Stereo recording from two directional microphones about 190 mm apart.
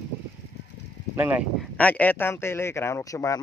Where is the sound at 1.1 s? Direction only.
10° right (ahead or behind).